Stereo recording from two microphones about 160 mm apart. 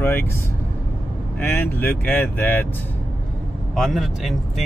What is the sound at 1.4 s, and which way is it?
Speech, 10° left (ahead or behind).